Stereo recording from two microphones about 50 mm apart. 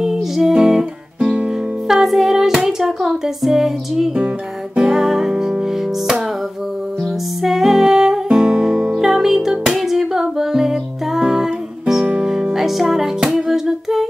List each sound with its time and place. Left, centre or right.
0.0 s music: centre
1.2 s music: right
1.9 s music: centre
7.4 s music: centre